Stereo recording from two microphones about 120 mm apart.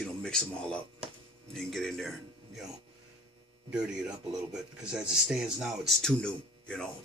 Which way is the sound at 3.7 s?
5° right (ahead or behind).